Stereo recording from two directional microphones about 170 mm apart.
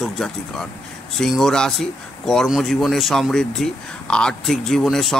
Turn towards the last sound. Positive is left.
turn(degrees=0)  # may be behind; listen again after turning